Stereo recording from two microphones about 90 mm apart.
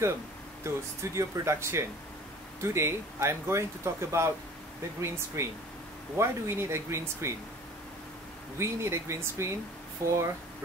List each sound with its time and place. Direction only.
0.7 s speech: 30° right (ahead or behind)
8.5 s speech: 30° right (ahead or behind)